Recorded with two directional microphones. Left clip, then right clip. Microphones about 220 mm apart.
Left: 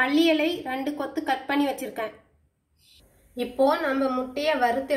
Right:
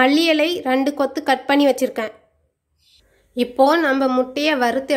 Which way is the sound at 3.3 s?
45° right (ahead or behind).